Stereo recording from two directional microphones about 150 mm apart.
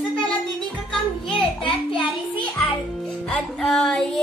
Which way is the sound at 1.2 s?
35° left (ahead or behind).